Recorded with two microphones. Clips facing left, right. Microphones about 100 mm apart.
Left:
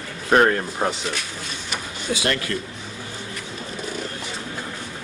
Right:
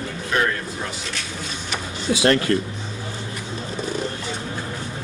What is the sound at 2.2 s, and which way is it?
Speech, 40° right (ahead or behind).